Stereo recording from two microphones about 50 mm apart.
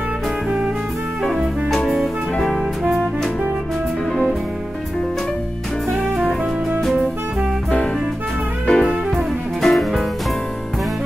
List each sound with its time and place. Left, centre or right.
1.7 s music: centre
8.6 s music: centre
9.1 s music: centre